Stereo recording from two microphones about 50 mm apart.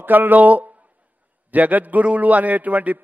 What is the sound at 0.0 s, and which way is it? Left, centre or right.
A man's voice, right.